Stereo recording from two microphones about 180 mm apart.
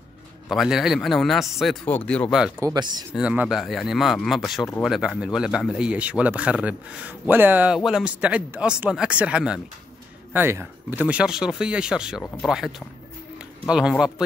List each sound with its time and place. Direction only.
0.5 s speech: centre (ahead or behind)
2.6 s speech: 25° right (ahead or behind)
3.2 s speech: 5° right (ahead or behind)